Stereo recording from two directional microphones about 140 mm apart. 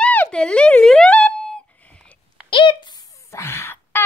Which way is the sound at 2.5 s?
35° left (ahead or behind).